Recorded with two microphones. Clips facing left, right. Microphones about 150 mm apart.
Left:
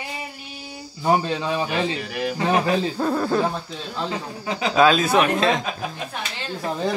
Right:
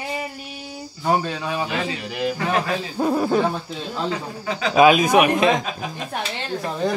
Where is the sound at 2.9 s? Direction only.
15° right (ahead or behind).